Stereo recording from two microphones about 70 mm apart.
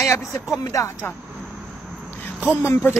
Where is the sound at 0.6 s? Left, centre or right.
Left.